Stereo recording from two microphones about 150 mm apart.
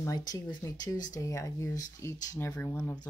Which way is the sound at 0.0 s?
25° left (ahead or behind).